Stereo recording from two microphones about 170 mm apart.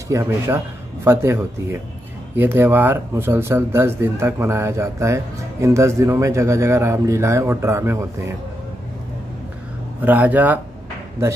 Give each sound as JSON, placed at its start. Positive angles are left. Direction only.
{"t": 0.1, "sound": "speech", "side_deg": -15}
{"t": 10.0, "sound": "speech", "side_deg": -10}